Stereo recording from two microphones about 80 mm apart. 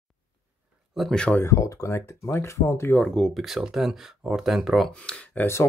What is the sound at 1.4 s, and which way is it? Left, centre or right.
Speech, left.